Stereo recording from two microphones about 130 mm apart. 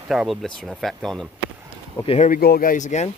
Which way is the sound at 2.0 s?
55° left (ahead or behind).